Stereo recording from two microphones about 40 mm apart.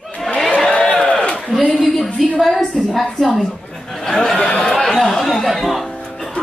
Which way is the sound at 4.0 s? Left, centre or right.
Centre.